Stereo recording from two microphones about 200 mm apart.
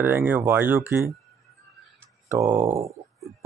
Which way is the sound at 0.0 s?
10° right (ahead or behind).